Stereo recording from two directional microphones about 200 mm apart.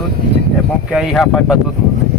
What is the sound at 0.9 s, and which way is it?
Speech, centre (ahead or behind).